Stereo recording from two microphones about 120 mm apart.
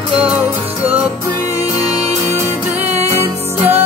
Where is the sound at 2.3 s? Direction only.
20° right (ahead or behind).